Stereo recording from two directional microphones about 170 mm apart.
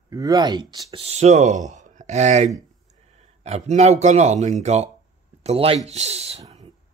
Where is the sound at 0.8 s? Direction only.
40° right (ahead or behind).